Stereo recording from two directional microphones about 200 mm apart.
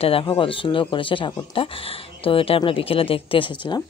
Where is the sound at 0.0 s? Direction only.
25° left (ahead or behind).